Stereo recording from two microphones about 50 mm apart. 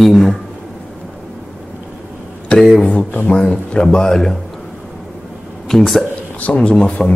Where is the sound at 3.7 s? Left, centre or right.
Centre.